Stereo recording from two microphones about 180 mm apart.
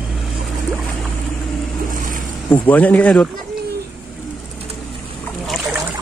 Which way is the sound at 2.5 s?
10° left (ahead or behind).